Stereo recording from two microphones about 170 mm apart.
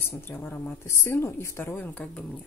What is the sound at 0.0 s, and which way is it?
Speech, 15° left (ahead or behind).